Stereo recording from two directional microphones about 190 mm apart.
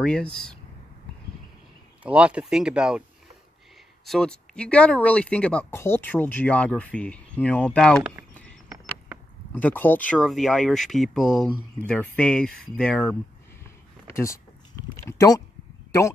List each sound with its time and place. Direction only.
0.0 s speech: 5° left (ahead or behind)
2.0 s speech: 5° right (ahead or behind)
4.0 s speech: centre (ahead or behind)
8.4 s a sound: 5° left (ahead or behind)
9.5 s speech: 10° left (ahead or behind)
14.1 s speech: 15° left (ahead or behind)